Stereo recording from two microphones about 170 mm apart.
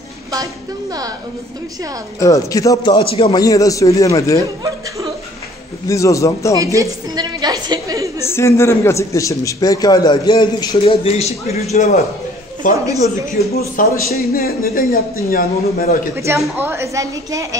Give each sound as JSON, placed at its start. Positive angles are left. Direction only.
{"t": 2.1, "sound": "a man's voice", "side_deg": 20}
{"t": 5.9, "sound": "a man's voice", "side_deg": 20}
{"t": 6.6, "sound": "a woman's voice", "side_deg": -20}
{"t": 8.2, "sound": "a man's voice", "side_deg": 15}
{"t": 12.7, "sound": "a woman's voice", "side_deg": -20}
{"t": 13.6, "sound": "speech", "side_deg": 65}
{"t": 16.5, "sound": "a woman's voice", "side_deg": -15}